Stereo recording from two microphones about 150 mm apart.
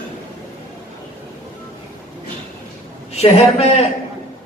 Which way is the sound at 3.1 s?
45° left (ahead or behind).